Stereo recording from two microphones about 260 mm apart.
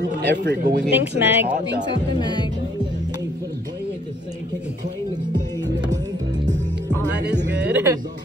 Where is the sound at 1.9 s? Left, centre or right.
Centre.